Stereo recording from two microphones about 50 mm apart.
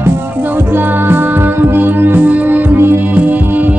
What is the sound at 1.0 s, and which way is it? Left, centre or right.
Music, right.